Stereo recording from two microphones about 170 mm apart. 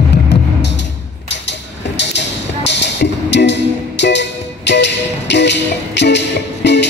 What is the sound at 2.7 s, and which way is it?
Music, 90° left.